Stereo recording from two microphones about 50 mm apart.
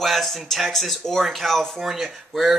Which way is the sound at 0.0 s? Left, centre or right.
Centre.